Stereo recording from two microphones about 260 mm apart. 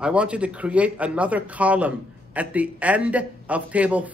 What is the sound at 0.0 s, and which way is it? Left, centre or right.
A man's voice, centre.